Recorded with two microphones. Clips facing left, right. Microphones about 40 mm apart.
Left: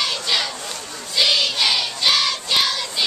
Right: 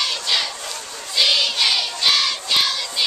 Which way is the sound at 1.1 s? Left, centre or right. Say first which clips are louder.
Even; centre.